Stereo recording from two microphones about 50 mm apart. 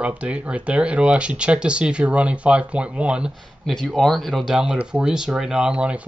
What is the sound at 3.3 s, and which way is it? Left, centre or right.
Speech, centre.